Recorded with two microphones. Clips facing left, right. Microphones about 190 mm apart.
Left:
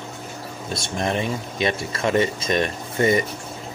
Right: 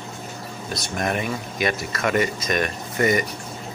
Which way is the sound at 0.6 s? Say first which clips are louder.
Left 1 dB; 25° left (ahead or behind).